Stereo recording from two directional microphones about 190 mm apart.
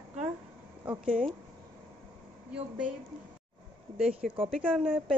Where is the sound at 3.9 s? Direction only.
5° right (ahead or behind).